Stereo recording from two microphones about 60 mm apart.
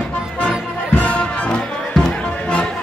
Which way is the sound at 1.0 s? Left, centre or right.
Left.